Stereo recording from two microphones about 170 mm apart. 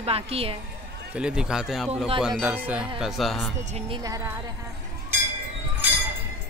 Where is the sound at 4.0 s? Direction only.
20° right (ahead or behind).